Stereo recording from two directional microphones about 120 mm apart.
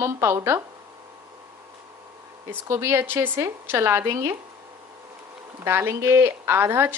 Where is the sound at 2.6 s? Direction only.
25° right (ahead or behind).